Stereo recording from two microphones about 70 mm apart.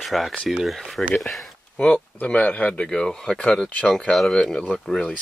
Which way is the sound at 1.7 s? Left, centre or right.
Centre.